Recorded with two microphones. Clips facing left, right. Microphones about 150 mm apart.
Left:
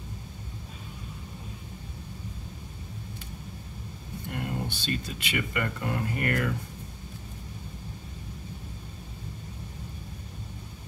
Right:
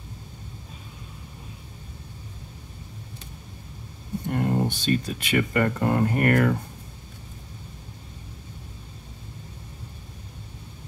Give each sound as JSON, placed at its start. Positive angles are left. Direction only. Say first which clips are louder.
{"t": 4.3, "sound": "speech", "louder": "right 9 dB", "side_deg": -45}